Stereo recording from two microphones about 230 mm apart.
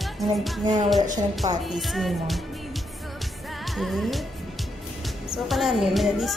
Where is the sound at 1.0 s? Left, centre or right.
Right.